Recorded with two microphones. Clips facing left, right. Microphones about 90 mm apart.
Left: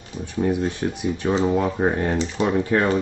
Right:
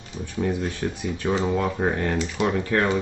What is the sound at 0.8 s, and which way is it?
Speech, 25° left (ahead or behind).